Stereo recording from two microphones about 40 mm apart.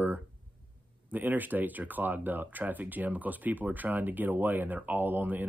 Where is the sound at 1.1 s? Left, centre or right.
Right.